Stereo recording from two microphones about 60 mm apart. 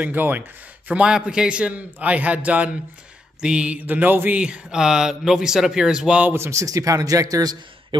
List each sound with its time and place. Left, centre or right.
0.0 s speech: right
0.9 s a man's voice: centre; by 4.4 s right
4.4 s speech: centre
6.3 s a man's voice: right
6.6 s speech: right